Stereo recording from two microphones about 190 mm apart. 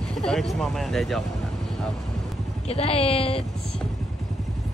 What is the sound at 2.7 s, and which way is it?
Speech, 30° left (ahead or behind).